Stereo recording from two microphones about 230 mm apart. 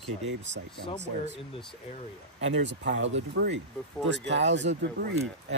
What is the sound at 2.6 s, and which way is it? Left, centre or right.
Speech, right.